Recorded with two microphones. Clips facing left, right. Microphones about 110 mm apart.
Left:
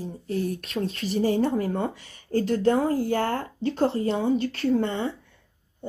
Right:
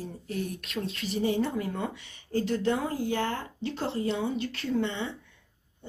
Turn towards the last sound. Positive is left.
turn(degrees=45)  # may be behind; listen again after turning